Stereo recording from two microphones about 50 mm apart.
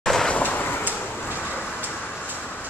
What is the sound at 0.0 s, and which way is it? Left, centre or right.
Vehicle, centre.